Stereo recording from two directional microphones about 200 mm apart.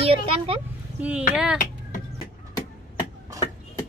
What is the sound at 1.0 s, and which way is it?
Speech, 5° right (ahead or behind).